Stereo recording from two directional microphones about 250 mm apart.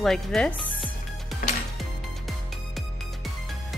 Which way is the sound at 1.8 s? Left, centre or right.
Centre.